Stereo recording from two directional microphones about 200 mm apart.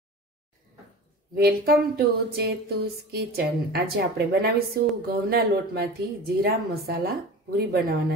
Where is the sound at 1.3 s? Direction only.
50° right (ahead or behind).